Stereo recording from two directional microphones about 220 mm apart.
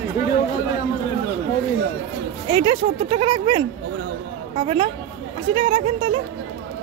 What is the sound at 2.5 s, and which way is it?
Speech, 25° right (ahead or behind).